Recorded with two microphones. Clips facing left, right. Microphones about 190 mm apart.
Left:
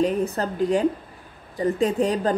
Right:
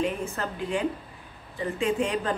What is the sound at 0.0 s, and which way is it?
Speech, 35° left (ahead or behind).